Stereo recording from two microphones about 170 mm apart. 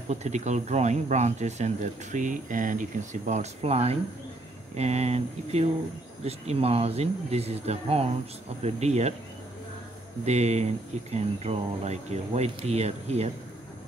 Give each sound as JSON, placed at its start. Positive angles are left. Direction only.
{"t": 0.1, "sound": "speech", "side_deg": -40}
{"t": 10.2, "sound": "speech", "side_deg": -40}